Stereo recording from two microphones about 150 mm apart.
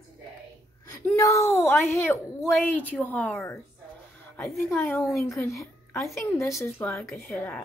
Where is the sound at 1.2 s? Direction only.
20° left (ahead or behind).